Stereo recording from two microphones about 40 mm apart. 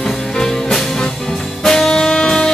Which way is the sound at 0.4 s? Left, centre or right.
Centre.